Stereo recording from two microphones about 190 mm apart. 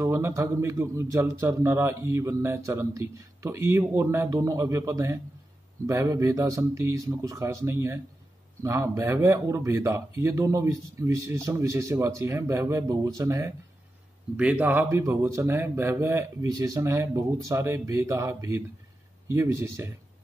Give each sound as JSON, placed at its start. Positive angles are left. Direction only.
{"t": 0.0, "sound": "a man's voice", "side_deg": -15}